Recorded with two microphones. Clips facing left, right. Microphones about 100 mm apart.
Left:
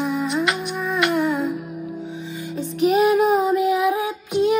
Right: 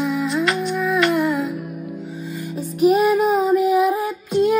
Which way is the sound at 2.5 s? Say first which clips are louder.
Right 2 dB; 5° right (ahead or behind).